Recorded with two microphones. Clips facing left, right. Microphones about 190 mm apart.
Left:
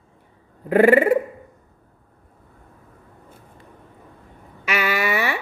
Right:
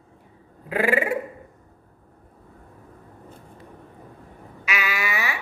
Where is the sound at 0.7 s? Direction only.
55° left (ahead or behind).